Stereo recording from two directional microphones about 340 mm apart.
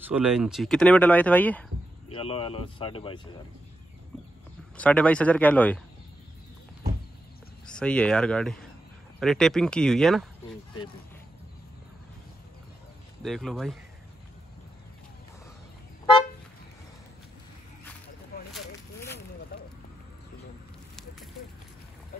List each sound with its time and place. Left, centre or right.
0.0 s speech: centre
2.0 s speech: centre
4.7 s speech: centre
7.6 s speech: centre
13.2 s speech: centre
18.5 s a sound: centre